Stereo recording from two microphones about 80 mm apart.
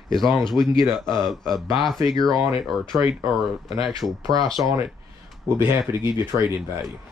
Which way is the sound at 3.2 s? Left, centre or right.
Right.